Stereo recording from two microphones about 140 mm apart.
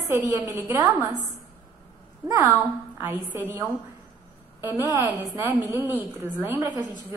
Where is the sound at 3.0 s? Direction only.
15° right (ahead or behind).